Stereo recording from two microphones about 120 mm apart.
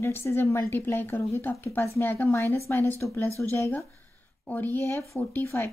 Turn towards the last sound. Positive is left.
turn(degrees=20)  # may be behind; listen again after turning